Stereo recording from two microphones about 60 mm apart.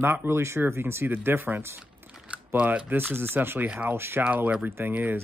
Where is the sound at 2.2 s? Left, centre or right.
Right.